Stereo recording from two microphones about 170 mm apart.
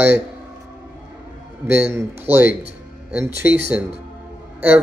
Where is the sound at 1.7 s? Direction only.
15° right (ahead or behind).